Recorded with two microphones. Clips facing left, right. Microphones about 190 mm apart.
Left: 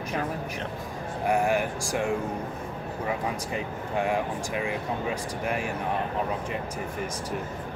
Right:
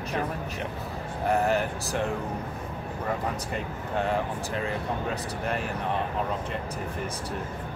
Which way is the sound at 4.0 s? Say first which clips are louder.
Left 1 dB; 15° left (ahead or behind).